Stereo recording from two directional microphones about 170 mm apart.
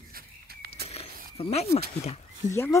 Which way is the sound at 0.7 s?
35° left (ahead or behind).